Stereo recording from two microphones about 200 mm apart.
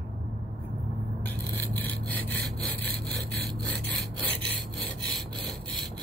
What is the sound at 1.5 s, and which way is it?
Sawing, 10° left (ahead or behind).